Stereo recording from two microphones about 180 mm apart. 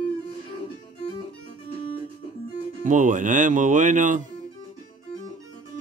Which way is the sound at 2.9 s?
45° right (ahead or behind).